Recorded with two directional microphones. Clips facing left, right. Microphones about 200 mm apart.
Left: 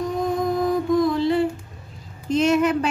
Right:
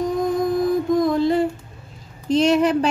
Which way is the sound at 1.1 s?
45° right (ahead or behind).